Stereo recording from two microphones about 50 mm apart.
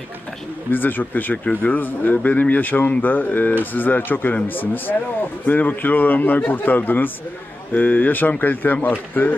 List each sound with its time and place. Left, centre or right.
0.7 s a man's voice: left